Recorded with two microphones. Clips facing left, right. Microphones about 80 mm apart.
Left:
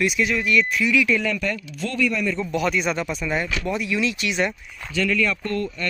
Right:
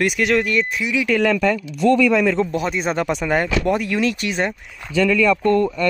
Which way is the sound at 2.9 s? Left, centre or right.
Right.